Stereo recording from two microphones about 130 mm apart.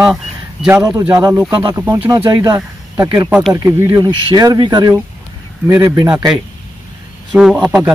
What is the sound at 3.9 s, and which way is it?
Speech, 30° right (ahead or behind).